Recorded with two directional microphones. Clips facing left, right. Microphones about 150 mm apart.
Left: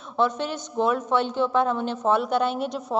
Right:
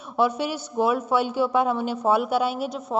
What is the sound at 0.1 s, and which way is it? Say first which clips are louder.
A man's voice: right 1 dB; 10° right (ahead or behind).